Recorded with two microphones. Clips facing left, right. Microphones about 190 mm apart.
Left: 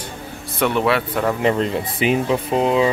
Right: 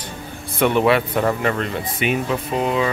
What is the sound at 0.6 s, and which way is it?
Speech, centre (ahead or behind).